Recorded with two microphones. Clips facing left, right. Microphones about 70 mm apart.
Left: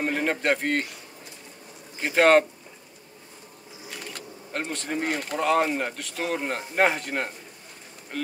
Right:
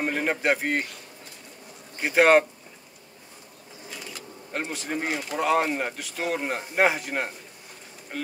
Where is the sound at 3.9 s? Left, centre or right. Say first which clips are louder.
Left 1 dB; left.